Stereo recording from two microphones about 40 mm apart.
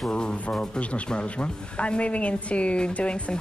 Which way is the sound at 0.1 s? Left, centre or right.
Left.